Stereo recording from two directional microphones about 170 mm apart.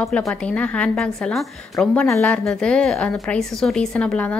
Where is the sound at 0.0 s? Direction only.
Centre (ahead or behind).